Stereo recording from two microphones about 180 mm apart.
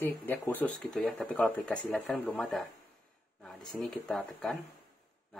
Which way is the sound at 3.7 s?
5° left (ahead or behind).